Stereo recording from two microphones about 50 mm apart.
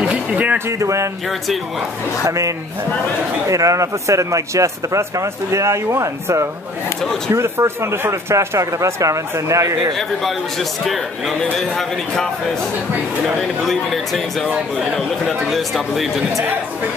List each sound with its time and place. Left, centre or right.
0.1 s a sound: right
0.7 s a sound: right
2.2 s speech: right
7.3 s speech: right
9.9 s a man's voice: centre
13.4 s a man's voice: centre